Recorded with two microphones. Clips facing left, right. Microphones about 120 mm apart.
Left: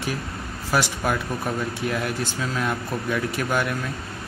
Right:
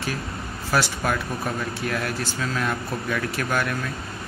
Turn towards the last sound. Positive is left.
turn(degrees=15)  # may be behind; listen again after turning